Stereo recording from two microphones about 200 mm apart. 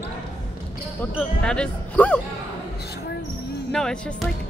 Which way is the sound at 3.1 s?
55° left (ahead or behind).